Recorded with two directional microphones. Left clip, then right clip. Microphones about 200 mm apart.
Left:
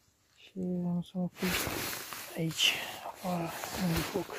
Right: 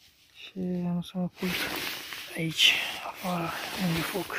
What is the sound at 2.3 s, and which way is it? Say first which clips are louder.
Speech: right 7 dB; 10° left (ahead or behind).